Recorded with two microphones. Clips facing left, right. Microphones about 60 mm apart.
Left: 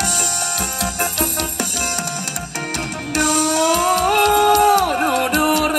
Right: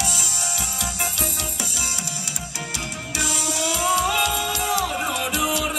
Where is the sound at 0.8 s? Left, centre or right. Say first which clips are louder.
Left 7 dB; left.